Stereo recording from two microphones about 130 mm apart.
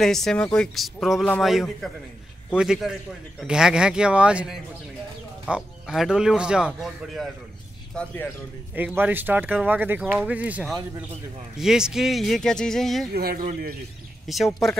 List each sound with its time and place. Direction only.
0.0 s speech: 5° left (ahead or behind)
7.9 s speech: 10° left (ahead or behind)
8.7 s speech: 15° right (ahead or behind)
13.4 s a man's voice: 90° right
14.2 s speech: centre (ahead or behind)